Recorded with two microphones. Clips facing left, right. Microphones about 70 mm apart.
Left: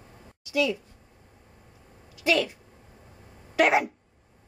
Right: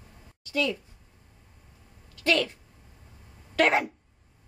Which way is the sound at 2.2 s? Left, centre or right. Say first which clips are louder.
Left 1 dB; centre.